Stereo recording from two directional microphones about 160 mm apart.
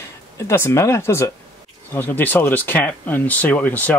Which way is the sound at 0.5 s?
15° left (ahead or behind).